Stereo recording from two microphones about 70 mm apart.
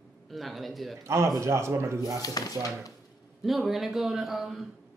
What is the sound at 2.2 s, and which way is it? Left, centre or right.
Dishes, left.